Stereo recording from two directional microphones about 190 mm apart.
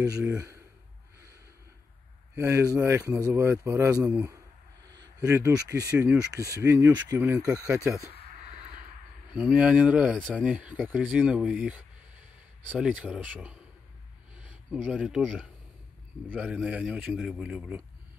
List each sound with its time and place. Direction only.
0.2 s a man's voice: 10° right (ahead or behind)
2.3 s a man's voice: 15° right (ahead or behind)
9.3 s a man's voice: 5° right (ahead or behind)